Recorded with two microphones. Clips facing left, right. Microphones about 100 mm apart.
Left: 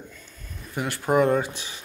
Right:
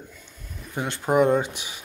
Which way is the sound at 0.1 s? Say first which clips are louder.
Even; 15° right (ahead or behind).